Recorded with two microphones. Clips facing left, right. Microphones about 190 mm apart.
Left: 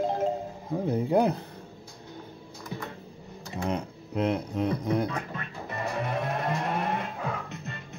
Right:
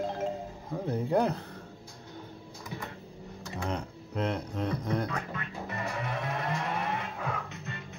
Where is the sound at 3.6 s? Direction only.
10° left (ahead or behind).